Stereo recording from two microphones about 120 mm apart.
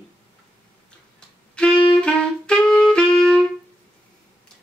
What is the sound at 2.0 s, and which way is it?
Saxophone, 5° left (ahead or behind).